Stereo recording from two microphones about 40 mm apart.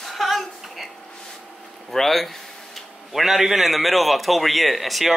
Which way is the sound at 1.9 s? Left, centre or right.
Centre.